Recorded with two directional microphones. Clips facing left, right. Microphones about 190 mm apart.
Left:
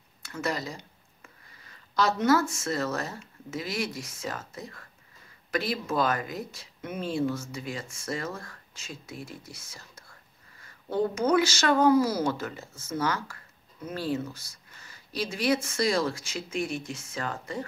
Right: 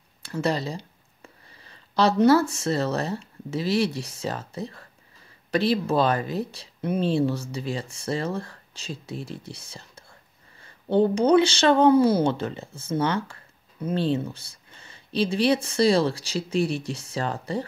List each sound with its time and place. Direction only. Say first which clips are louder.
0.2 s speech: right 6 dB; 30° right (ahead or behind)